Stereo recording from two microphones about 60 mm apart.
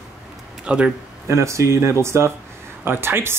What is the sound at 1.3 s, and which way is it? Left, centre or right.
Speech, right.